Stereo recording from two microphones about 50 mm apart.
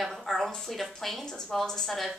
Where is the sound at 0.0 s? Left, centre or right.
Centre.